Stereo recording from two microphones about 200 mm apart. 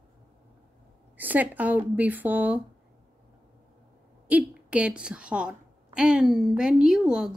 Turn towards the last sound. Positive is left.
turn(degrees=-5)  # may be behind; listen again after turning